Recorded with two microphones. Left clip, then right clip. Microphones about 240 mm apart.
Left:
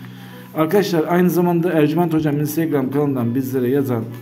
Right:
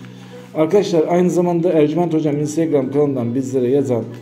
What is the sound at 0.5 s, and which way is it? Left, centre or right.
A man's voice, centre.